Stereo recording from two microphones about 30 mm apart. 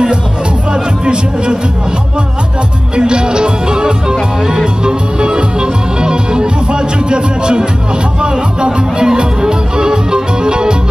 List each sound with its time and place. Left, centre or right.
1.0 s music: right
3.0 s music: right